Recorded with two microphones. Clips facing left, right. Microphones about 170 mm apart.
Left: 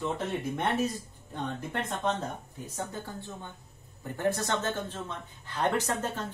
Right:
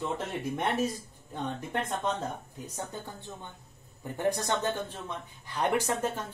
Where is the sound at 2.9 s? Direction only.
20° right (ahead or behind).